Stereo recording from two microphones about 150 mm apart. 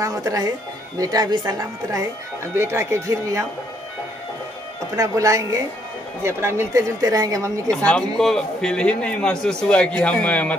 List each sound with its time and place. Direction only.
0.0 s speech: 20° right (ahead or behind)
4.9 s speech: 20° right (ahead or behind)
7.7 s a man's voice: 5° left (ahead or behind)